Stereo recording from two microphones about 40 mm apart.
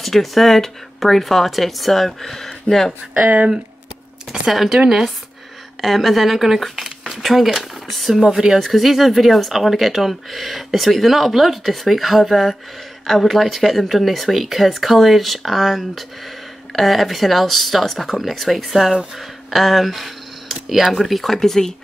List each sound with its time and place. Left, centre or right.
0.0 s speech: centre
3.2 s speech: right
4.5 s speech: centre
4.7 s speech: centre
5.8 s speech: centre
8.5 s speech: centre